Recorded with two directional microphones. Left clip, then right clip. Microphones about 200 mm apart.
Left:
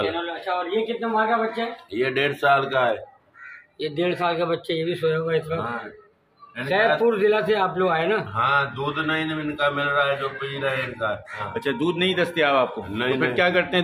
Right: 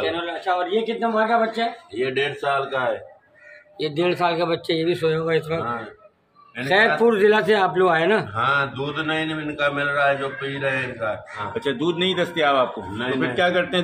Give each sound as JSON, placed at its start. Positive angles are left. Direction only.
{"t": 0.2, "sound": "speech", "side_deg": -40}
{"t": 2.0, "sound": "speech", "side_deg": 45}
{"t": 3.8, "sound": "a man's voice", "side_deg": -20}
{"t": 6.6, "sound": "a man's voice", "side_deg": -40}
{"t": 8.4, "sound": "mantra", "side_deg": 10}
{"t": 11.5, "sound": "a man's voice", "side_deg": 0}
{"t": 12.9, "sound": "a man's voice", "side_deg": 55}
{"t": 13.2, "sound": "a man's voice", "side_deg": 0}